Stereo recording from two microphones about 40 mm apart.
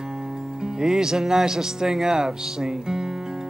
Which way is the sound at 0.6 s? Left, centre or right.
Centre.